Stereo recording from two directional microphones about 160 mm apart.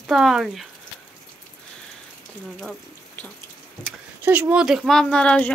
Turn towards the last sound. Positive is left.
turn(degrees=5)  # may be behind; listen again after turning